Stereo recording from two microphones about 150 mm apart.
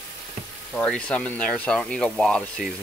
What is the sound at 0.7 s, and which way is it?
Speech, 5° left (ahead or behind).